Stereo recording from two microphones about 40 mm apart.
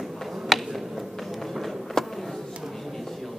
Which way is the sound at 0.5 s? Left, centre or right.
Centre.